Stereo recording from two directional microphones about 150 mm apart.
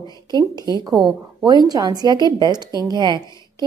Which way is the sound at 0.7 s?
25° right (ahead or behind).